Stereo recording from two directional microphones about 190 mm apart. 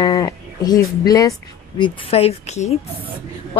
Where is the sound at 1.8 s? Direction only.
30° left (ahead or behind).